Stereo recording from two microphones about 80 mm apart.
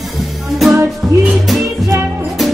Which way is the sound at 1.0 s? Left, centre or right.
Centre.